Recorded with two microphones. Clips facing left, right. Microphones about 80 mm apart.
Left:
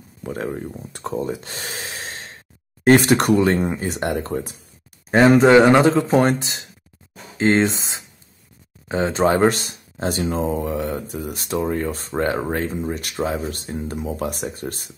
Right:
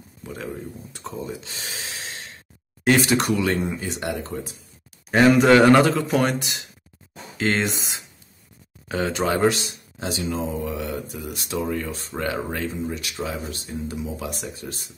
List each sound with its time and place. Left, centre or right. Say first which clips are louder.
0.2 s speech: left 6 dB; left
5.1 s speech: left 3 dB; left